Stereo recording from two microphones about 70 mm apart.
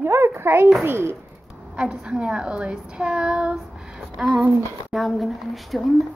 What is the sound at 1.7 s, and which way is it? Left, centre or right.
A woman's voice, centre.